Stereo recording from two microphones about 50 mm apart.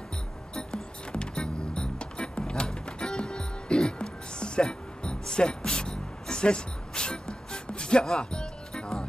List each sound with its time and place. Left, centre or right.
1.1 s music: centre